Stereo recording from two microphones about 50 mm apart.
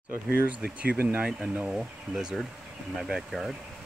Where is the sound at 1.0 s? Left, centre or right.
Right.